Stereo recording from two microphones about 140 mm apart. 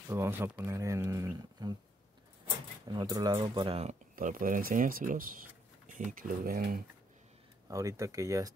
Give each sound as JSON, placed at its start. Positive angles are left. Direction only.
{"t": 0.1, "sound": "speech", "side_deg": -15}
{"t": 2.9, "sound": "speech", "side_deg": -30}
{"t": 4.1, "sound": "speech", "side_deg": -75}
{"t": 7.6, "sound": "speech", "side_deg": -25}